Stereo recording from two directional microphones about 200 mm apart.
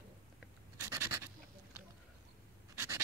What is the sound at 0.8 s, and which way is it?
Writing, 15° right (ahead or behind).